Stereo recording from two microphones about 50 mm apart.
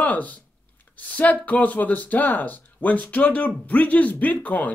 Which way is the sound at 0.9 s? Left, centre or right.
Left.